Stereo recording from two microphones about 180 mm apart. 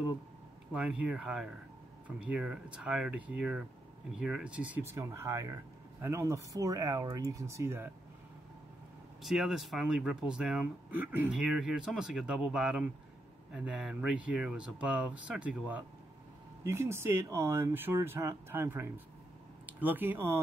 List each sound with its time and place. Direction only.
0.7 s speech: 5° right (ahead or behind)
9.2 s speech: centre (ahead or behind)